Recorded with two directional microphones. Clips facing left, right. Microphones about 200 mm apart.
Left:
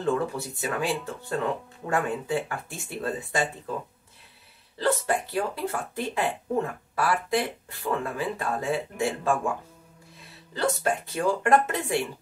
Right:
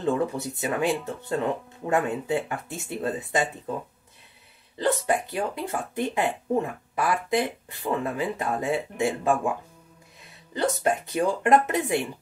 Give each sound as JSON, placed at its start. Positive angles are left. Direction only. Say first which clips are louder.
{"t": 0.0, "sound": "speech", "louder": "right 1 dB", "side_deg": -20}
{"t": 4.7, "sound": "speech", "louder": "right 1 dB", "side_deg": -15}
{"t": 10.5, "sound": "speech", "louder": "right 2 dB", "side_deg": -20}